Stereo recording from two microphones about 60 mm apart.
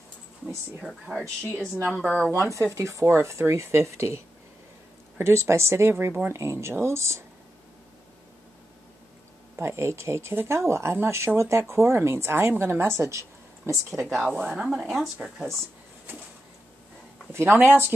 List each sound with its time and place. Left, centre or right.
0.8 s speech: centre
2.1 s speech: centre
2.4 s a woman's voice: right
5.2 s a woman's voice: right
9.6 s a woman's voice: right
14.2 s speech: centre
14.6 s speech: centre
17.3 s a woman's voice: right